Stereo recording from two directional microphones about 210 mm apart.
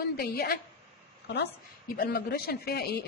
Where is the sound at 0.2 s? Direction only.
50° left (ahead or behind).